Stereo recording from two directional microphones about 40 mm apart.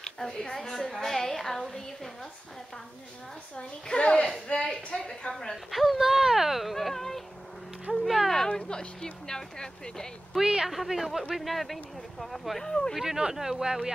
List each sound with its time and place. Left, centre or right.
0.0 s a woman's voice: centre
3.8 s a woman's voice: centre
5.7 s speech: centre
8.3 s speech: centre
10.3 s speech: centre
12.6 s speech: centre
13.0 s speech: centre